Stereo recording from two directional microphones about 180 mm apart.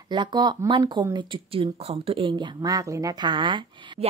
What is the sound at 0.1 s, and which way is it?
A woman's voice, 25° right (ahead or behind).